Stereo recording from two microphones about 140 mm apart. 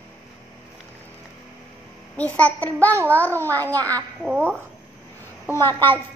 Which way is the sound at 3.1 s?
10° left (ahead or behind).